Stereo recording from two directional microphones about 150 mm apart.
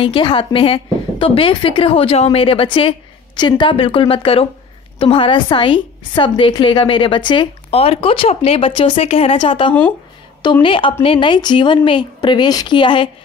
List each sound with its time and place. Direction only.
0.0 s a woman's voice: 35° left (ahead or behind)